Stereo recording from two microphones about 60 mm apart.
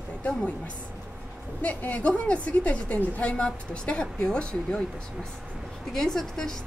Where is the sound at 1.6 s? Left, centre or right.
Left.